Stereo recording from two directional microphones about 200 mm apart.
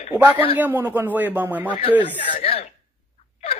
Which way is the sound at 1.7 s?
25° left (ahead or behind).